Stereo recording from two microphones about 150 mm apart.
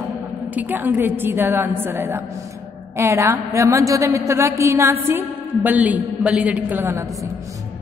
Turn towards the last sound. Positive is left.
turn(degrees=-15)  # may be behind; listen again after turning